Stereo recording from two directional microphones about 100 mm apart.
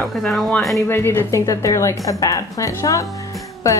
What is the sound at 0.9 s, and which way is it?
A woman's voice, 25° left (ahead or behind).